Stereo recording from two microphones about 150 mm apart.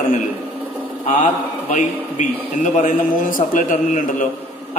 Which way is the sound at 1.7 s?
55° left (ahead or behind).